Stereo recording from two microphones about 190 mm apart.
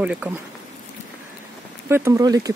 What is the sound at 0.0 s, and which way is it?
Speech, 5° right (ahead or behind).